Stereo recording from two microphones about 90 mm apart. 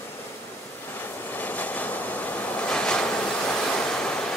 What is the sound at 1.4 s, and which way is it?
Vehicle, 20° left (ahead or behind).